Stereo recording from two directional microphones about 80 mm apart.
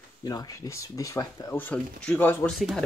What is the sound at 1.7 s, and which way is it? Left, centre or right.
Speech, centre.